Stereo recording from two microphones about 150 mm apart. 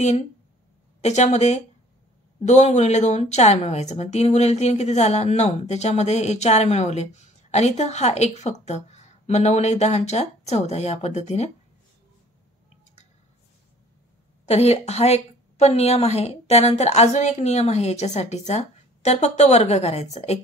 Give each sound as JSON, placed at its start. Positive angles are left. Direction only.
{"t": 1.0, "sound": "a woman's voice", "side_deg": 50}
{"t": 14.5, "sound": "a woman's voice", "side_deg": 45}